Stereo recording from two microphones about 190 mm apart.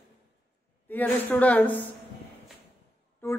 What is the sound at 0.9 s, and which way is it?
Speech, 10° left (ahead or behind).